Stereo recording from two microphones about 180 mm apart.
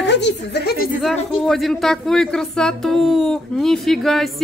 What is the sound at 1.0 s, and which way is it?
Speech, centre (ahead or behind).